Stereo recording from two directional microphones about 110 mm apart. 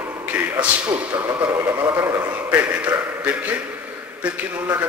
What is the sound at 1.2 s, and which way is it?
A man's voice, 15° right (ahead or behind).